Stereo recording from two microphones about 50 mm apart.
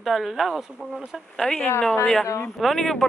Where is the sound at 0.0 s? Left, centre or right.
Centre.